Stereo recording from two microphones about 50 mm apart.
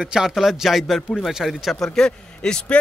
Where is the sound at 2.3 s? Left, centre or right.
Centre.